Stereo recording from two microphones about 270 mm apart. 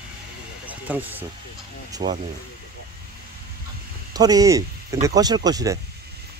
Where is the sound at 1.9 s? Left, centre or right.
Centre.